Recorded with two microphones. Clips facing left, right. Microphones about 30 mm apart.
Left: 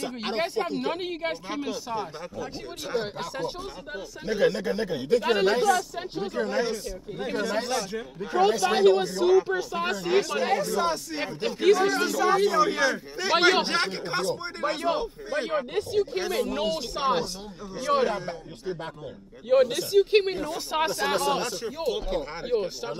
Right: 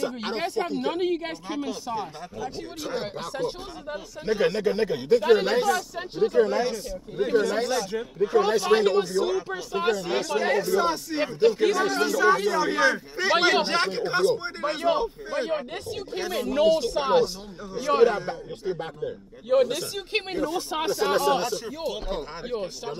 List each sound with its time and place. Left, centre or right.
0.0 s speech: centre
4.3 s a man's voice: centre
20.5 s speech: centre
20.9 s speech: centre